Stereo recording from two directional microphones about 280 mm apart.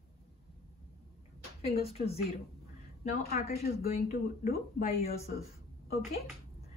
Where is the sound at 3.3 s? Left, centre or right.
Left.